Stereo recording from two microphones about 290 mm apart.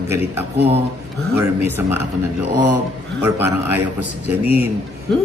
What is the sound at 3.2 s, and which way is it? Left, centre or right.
Speech, centre.